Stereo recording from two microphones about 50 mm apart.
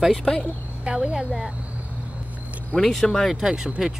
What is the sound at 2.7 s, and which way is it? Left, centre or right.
Speech, centre.